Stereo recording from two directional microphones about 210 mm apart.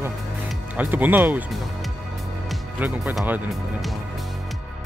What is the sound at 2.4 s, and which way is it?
Music, 5° right (ahead or behind).